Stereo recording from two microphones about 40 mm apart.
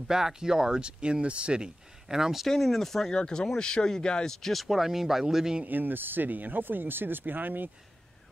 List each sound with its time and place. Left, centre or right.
0.1 s speech: centre
2.4 s speech: centre
3.1 s speech: left
4.3 s speech: centre
4.6 s speech: centre
5.7 s speech: right